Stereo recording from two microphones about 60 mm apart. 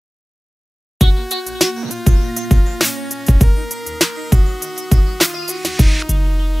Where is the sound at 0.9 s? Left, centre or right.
Centre.